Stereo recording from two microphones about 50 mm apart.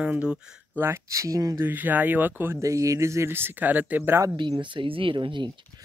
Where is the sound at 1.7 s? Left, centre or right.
Right.